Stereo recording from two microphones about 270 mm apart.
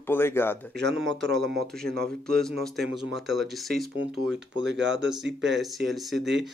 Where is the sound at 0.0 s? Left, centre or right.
Centre.